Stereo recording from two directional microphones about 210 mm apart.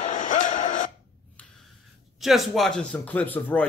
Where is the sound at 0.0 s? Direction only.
35° left (ahead or behind).